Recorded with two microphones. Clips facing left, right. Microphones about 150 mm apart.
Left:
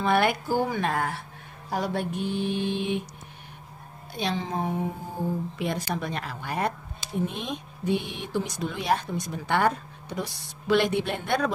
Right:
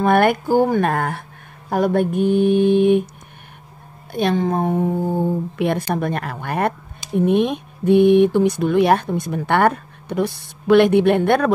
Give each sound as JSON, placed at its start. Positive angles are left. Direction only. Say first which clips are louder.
{"t": 0.0, "sound": "mantra", "louder": "right 8 dB", "side_deg": -50}
{"t": 4.1, "sound": "speech", "louder": "right 10 dB", "side_deg": -55}